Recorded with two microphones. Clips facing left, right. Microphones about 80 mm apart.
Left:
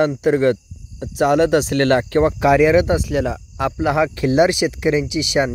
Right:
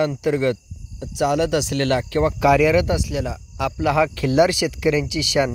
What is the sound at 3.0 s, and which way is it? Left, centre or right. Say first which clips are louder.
Speech: left 5 dB; left.